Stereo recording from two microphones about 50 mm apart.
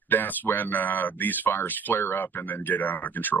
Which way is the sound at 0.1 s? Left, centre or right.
Left.